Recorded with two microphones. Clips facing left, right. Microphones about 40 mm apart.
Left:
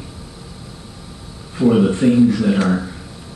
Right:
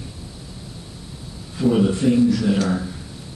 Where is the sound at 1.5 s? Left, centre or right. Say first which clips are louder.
Left 4 dB; left.